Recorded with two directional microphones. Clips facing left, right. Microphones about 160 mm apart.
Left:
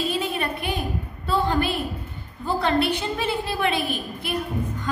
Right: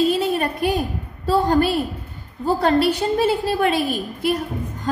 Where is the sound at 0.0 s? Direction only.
45° right (ahead or behind).